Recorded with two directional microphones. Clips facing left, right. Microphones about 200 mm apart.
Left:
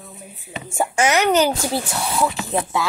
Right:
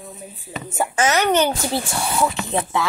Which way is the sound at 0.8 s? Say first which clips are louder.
Left 1 dB; 10° left (ahead or behind).